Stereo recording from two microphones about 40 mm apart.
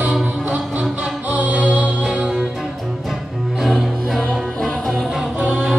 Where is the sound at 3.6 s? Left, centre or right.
Centre.